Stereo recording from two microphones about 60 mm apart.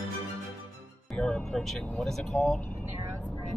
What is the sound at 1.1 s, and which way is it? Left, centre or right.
Music, centre.